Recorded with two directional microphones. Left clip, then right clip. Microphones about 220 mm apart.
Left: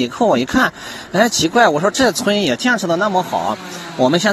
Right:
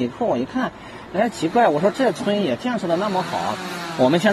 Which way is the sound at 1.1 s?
25° left (ahead or behind).